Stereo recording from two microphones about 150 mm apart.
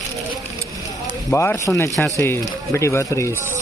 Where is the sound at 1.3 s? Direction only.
15° left (ahead or behind).